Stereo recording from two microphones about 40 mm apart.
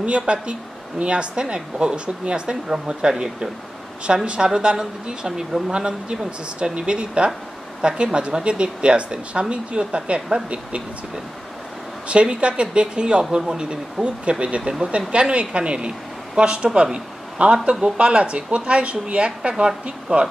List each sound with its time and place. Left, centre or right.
0.3 s speech: right
12.1 s speech: right
14.9 s speech: right